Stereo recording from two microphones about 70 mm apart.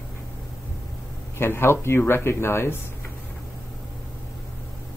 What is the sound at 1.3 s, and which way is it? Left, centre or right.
Speech, left.